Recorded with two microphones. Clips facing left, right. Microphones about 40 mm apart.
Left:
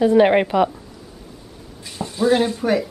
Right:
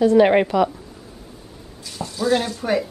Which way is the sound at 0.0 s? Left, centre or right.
Centre.